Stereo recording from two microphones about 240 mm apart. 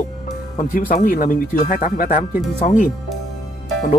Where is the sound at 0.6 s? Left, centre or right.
Left.